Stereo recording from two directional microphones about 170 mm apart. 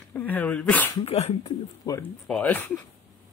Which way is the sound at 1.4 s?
20° left (ahead or behind).